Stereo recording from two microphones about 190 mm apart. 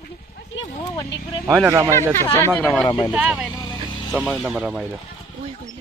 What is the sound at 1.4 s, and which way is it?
Speech, 10° right (ahead or behind).